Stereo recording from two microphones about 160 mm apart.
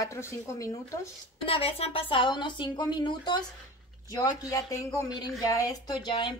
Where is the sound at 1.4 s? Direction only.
35° left (ahead or behind).